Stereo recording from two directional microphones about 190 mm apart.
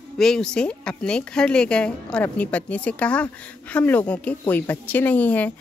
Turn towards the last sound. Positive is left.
turn(degrees=10)  # may be behind; listen again after turning